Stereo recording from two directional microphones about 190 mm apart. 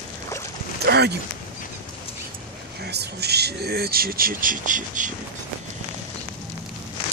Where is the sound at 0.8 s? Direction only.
60° right (ahead or behind).